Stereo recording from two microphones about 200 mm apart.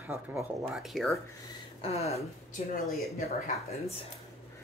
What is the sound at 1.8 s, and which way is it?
Speech, 30° left (ahead or behind).